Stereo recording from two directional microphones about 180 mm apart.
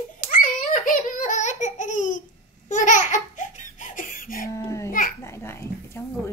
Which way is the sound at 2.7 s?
45° left (ahead or behind).